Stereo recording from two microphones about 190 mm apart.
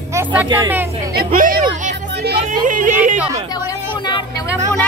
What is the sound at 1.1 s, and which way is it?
A woman's voice, 45° right (ahead or behind).